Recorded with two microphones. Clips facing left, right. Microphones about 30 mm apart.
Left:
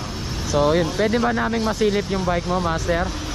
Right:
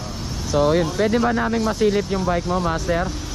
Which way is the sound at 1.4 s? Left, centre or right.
Left.